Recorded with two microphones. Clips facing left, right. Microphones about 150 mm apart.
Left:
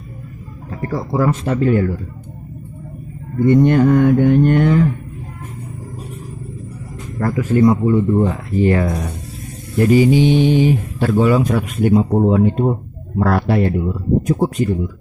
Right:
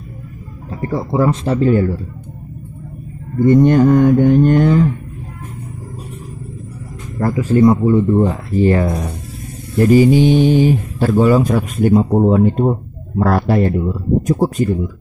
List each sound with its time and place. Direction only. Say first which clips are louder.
0.7 s a man's voice: right 2 dB; 25° right (ahead or behind)
3.4 s speech: right 2 dB; 35° right (ahead or behind)
7.2 s a man's voice: right 2 dB; 25° right (ahead or behind)